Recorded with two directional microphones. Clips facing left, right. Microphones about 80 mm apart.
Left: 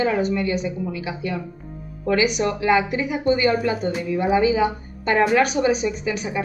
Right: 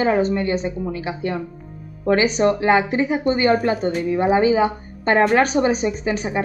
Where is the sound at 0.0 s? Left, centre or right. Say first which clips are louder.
Right 3 dB; right.